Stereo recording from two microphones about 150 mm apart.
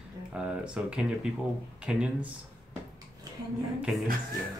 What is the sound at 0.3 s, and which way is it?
Speech, 5° right (ahead or behind).